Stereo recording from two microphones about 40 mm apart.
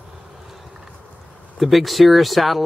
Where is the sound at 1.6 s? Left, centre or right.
Centre.